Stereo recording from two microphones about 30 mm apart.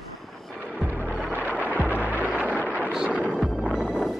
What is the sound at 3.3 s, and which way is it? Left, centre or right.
Music, centre.